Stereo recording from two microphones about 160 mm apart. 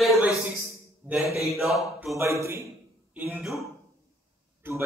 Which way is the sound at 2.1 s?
15° right (ahead or behind).